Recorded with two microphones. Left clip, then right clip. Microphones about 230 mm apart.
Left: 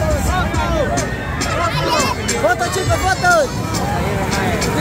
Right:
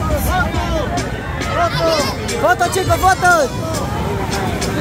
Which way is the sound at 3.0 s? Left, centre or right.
Right.